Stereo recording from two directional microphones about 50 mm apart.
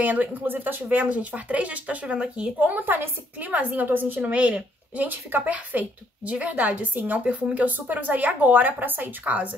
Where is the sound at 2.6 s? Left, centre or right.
Right.